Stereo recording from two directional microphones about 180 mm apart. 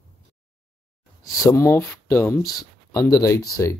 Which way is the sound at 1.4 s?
15° left (ahead or behind).